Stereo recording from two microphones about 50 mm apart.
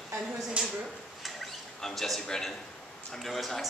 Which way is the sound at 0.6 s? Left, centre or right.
Right.